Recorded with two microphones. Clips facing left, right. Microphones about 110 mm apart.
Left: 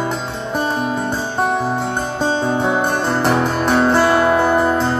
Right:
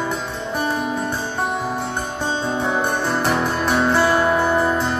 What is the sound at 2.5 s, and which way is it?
Music, 20° left (ahead or behind).